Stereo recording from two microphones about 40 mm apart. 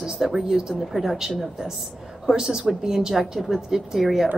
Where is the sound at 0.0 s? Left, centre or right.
Centre.